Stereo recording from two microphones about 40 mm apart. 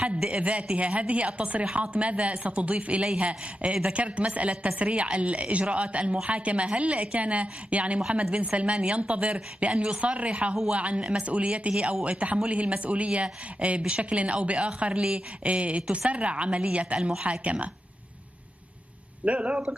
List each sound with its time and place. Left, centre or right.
0.3 s speech: right
19.2 s speech: right